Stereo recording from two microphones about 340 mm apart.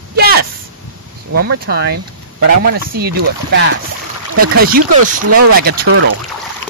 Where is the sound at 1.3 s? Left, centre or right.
Right.